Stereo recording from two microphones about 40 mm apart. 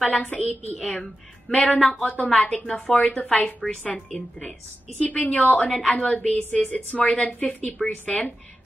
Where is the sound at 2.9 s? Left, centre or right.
Left.